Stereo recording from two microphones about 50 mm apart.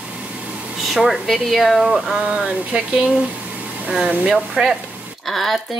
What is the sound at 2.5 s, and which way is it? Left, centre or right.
Speech, right.